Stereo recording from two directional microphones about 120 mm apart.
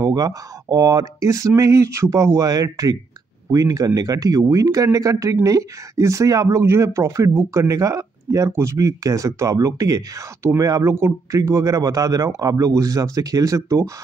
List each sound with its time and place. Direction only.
0.0 s speech: 30° right (ahead or behind)